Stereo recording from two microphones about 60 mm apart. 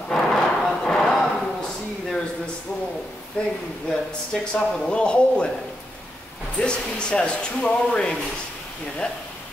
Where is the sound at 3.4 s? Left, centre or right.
Centre.